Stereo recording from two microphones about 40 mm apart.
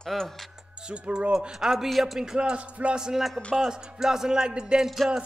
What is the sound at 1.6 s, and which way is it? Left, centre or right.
Music, centre.